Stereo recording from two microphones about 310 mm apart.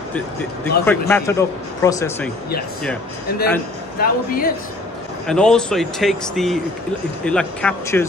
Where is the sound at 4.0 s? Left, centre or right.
Left.